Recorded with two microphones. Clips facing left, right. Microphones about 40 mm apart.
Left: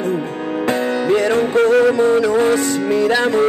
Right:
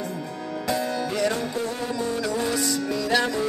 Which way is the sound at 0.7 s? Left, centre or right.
Left.